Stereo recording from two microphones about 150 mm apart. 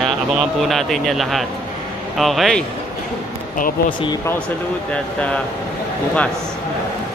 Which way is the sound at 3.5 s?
65° left (ahead or behind).